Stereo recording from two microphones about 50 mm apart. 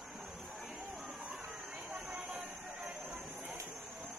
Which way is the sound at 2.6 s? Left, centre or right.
Centre.